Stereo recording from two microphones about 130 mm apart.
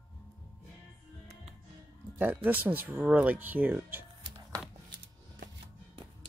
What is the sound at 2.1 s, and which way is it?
Speech, 15° right (ahead or behind).